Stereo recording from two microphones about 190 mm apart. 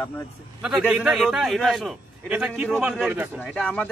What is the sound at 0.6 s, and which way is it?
A man's voice, 5° right (ahead or behind).